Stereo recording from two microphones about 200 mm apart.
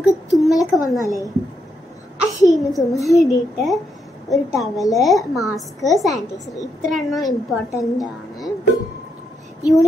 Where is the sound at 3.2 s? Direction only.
15° left (ahead or behind).